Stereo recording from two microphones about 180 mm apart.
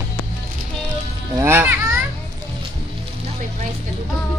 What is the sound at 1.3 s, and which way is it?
Speech, 15° right (ahead or behind).